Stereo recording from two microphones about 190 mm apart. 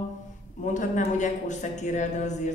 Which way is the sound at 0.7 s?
40° left (ahead or behind).